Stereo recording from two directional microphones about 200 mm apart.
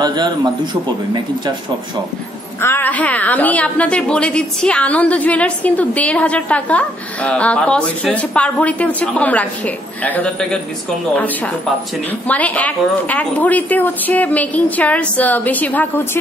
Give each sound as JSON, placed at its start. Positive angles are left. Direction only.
{"t": 0.0, "sound": "a man's voice", "side_deg": -20}
{"t": 2.6, "sound": "a woman's voice", "side_deg": 10}